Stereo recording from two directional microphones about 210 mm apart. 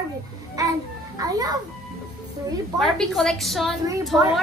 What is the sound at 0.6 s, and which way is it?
Children playing, 15° right (ahead or behind).